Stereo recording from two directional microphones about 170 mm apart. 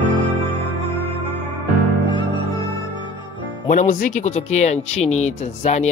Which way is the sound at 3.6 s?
50° left (ahead or behind).